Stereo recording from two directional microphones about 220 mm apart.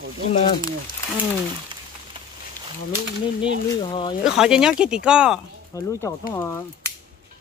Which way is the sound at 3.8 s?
25° left (ahead or behind).